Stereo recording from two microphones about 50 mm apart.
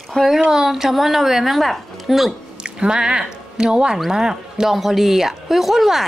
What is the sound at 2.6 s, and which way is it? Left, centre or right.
Speech, centre.